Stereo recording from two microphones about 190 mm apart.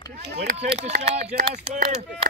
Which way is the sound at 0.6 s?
35° right (ahead or behind).